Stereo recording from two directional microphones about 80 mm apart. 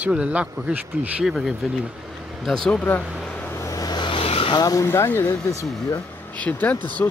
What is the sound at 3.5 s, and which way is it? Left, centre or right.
Vehicle, left.